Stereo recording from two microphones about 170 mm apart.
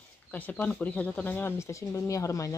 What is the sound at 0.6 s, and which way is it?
Speech, 10° left (ahead or behind).